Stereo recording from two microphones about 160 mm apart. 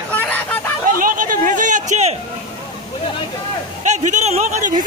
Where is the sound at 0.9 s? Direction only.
60° right (ahead or behind).